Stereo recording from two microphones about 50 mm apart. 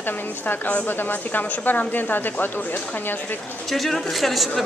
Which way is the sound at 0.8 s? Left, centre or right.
Left.